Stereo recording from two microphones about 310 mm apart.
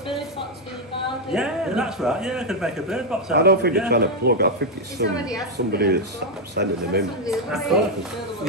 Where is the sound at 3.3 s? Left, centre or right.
Right.